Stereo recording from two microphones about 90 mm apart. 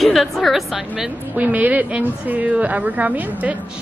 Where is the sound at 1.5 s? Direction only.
15° right (ahead or behind).